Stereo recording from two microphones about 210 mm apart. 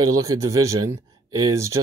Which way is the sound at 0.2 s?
15° right (ahead or behind).